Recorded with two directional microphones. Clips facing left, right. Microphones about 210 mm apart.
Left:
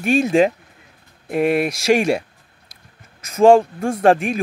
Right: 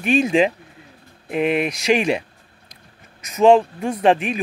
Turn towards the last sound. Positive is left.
turn(degrees=45)  # may be behind; listen again after turning